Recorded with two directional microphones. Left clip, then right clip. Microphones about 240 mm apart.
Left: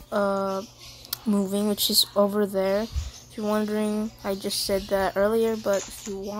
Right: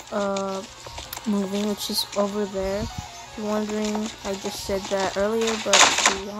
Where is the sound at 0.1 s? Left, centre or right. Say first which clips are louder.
Left 1 dB; centre.